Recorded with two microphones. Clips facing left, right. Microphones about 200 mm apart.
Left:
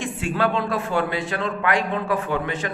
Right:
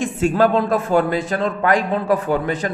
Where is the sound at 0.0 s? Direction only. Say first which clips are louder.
Right 7 dB; 40° right (ahead or behind).